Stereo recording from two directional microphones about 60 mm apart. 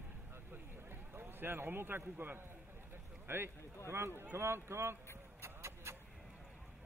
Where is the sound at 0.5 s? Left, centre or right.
Right.